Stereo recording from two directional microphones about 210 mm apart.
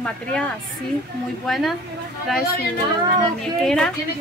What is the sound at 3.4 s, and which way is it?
Speech, centre (ahead or behind).